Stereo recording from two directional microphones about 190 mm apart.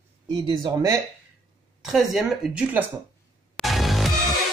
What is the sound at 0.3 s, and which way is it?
Speech, 25° right (ahead or behind).